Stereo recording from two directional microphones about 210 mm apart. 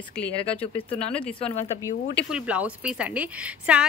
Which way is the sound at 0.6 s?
25° left (ahead or behind).